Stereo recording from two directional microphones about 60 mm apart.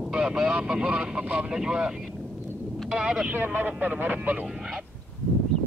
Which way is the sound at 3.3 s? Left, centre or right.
Right.